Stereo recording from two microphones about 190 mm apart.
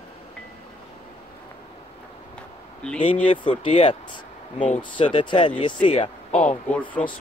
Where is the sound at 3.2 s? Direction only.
25° left (ahead or behind).